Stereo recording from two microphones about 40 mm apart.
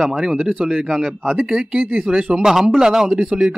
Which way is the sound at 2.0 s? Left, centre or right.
Centre.